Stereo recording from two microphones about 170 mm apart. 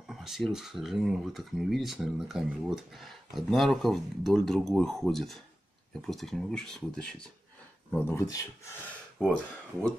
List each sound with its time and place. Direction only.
0.0 s speech: centre (ahead or behind)
8.1 s speech: 15° left (ahead or behind)
9.2 s speech: 5° right (ahead or behind)